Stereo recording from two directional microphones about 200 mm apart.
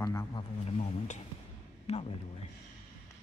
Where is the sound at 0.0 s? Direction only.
15° left (ahead or behind); by 2.1 s 30° left (ahead or behind).